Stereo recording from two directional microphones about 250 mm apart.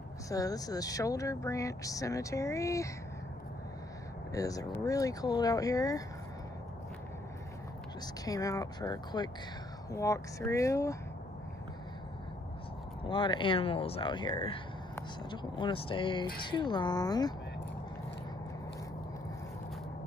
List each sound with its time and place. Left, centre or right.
0.3 s speech: centre
4.3 s speech: centre
8.3 s speech: centre
13.0 s speech: centre